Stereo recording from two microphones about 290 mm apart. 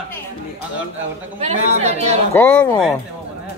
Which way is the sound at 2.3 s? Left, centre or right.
Centre.